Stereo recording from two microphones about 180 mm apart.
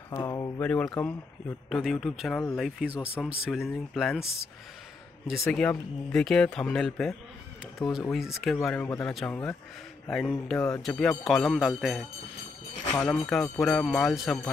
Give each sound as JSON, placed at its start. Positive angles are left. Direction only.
{"t": 0.1, "sound": "speech", "side_deg": 20}
{"t": 0.6, "sound": "a man's voice", "side_deg": 5}
{"t": 5.5, "sound": "a man's voice", "side_deg": 5}
{"t": 8.6, "sound": "a man's voice", "side_deg": 10}
{"t": 12.9, "sound": "a man's voice", "side_deg": 10}